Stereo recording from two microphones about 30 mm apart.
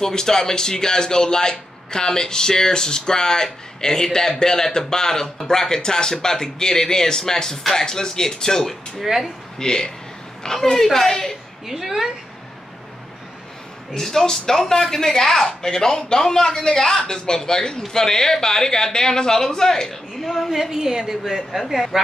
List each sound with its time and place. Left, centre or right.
0.0 s speech: left
9.0 s speech: centre
9.6 s speech: left
11.6 s speech: centre
13.9 s speech: centre
15.4 s speech: left
20.2 s a woman's voice: centre
20.7 s speech: centre